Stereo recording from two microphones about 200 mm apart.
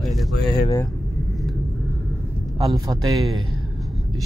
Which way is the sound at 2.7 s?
20° right (ahead or behind).